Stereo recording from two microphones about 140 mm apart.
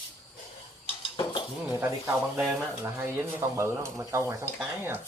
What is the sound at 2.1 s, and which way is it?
Speech, 5° right (ahead or behind).